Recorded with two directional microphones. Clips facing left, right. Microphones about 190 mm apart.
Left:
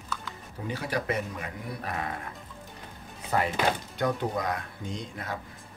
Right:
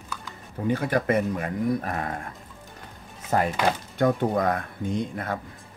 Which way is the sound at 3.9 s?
50° right (ahead or behind).